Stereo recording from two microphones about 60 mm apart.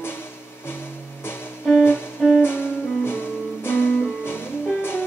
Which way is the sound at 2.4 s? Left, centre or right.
Left.